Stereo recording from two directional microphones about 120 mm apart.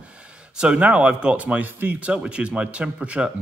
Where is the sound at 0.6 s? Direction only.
10° right (ahead or behind).